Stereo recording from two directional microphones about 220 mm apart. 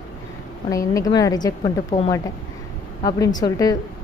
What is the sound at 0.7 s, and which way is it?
A woman's voice, 15° left (ahead or behind).